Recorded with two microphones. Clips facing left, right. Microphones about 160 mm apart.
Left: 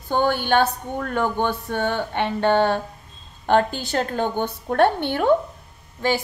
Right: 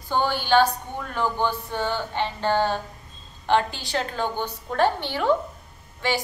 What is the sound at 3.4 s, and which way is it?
A woman's voice, 50° left (ahead or behind).